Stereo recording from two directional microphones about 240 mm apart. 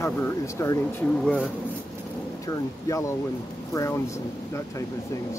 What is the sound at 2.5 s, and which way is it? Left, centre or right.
Speech, centre.